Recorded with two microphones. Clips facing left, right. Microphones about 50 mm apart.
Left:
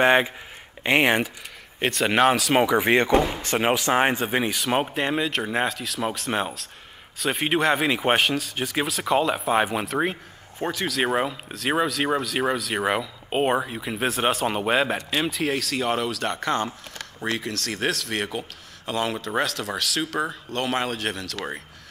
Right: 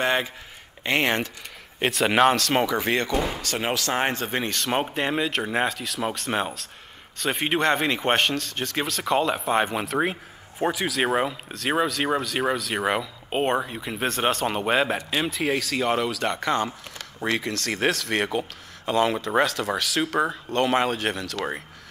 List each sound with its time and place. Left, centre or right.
0.0 s speech: left
1.8 s speech: centre
17.6 s speech: centre